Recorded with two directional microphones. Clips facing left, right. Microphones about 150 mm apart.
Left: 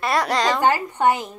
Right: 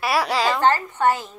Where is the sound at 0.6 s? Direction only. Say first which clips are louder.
Even; 15° left (ahead or behind).